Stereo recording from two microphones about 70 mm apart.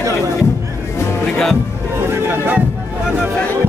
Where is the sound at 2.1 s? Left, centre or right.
Right.